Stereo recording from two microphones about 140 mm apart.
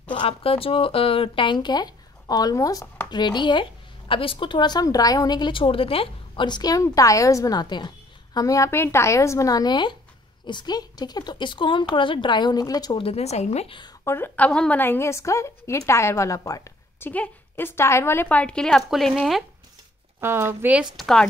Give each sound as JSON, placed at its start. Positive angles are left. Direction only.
{"t": 0.1, "sound": "a woman's voice", "side_deg": 40}
{"t": 12.9, "sound": "speech", "side_deg": 45}
{"t": 14.0, "sound": "a woman's voice", "side_deg": 15}
{"t": 17.1, "sound": "a woman's voice", "side_deg": 15}
{"t": 20.2, "sound": "speech", "side_deg": -15}
{"t": 20.9, "sound": "speech", "side_deg": 5}